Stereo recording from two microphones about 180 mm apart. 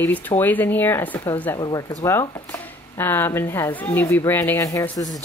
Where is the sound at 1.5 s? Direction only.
25° left (ahead or behind).